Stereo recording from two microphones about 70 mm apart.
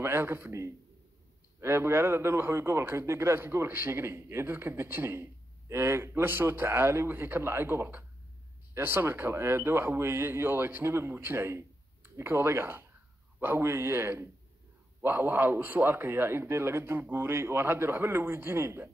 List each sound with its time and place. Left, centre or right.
0.0 s a man's voice: right
0.5 s a man's voice: right
1.6 s a man's voice: right